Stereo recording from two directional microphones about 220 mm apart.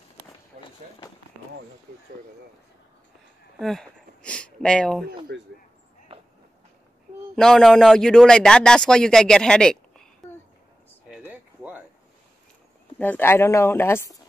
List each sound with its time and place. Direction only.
0.5 s a sound: 30° right (ahead or behind)
3.5 s speech: centre (ahead or behind)
5.3 s speech: 50° right (ahead or behind)
6.1 s walk: 25° right (ahead or behind)
7.3 s speech: centre (ahead or behind)
11.1 s a sound: 10° right (ahead or behind)
13.0 s speech: 10° left (ahead or behind)